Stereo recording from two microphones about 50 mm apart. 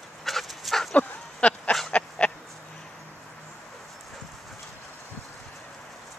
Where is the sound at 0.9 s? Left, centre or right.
Left.